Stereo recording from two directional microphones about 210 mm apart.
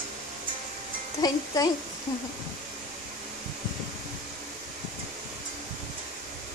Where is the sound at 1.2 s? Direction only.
15° left (ahead or behind).